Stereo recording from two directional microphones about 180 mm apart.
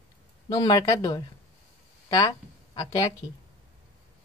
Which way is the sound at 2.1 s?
20° left (ahead or behind).